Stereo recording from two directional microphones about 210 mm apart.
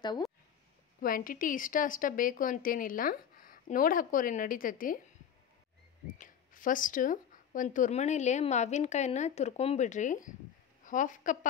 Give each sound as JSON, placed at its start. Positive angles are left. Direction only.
{"t": 1.0, "sound": "speech", "side_deg": 40}
{"t": 6.1, "sound": "speech", "side_deg": 40}